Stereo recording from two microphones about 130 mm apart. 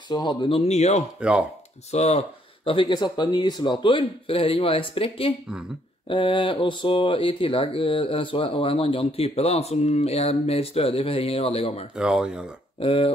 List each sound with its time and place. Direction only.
0.1 s speech: 35° left (ahead or behind)
0.6 s speech: 55° left (ahead or behind)
2.6 s speech: 40° left (ahead or behind)
11.9 s speech: 5° right (ahead or behind)
12.8 s speech: 45° left (ahead or behind)